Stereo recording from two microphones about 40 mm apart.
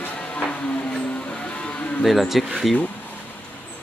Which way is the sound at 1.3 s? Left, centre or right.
Left.